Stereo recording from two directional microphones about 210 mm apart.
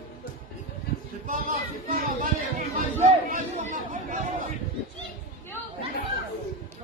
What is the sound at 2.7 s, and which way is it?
Chatter, 40° right (ahead or behind).